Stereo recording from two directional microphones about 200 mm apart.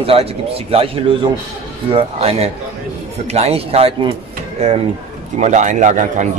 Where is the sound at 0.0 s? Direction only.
30° right (ahead or behind).